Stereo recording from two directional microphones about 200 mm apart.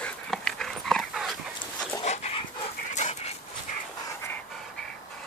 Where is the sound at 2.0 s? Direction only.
35° left (ahead or behind).